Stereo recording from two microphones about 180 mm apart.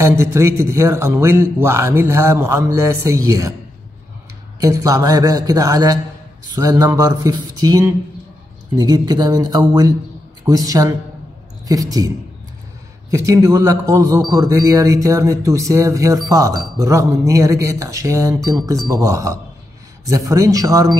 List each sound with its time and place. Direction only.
0.0 s speech: 15° right (ahead or behind)
4.6 s speech: 20° right (ahead or behind)
13.1 s speech: 20° right (ahead or behind)